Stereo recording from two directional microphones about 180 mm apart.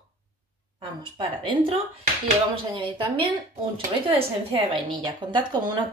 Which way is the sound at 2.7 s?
25° right (ahead or behind).